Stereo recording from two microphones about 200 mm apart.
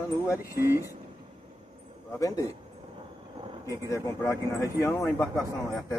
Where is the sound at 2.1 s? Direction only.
15° left (ahead or behind).